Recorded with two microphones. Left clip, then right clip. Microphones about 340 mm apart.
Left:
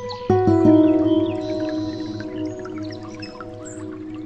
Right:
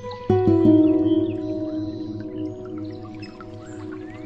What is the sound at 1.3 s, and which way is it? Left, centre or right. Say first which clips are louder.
Music: left 3 dB; left.